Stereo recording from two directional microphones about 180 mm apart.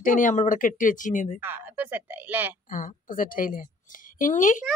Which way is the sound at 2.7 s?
50° left (ahead or behind).